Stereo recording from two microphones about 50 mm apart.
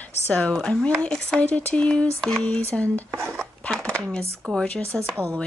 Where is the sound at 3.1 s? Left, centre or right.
Right.